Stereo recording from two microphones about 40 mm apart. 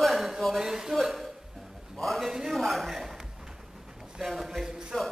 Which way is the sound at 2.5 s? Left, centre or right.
Centre.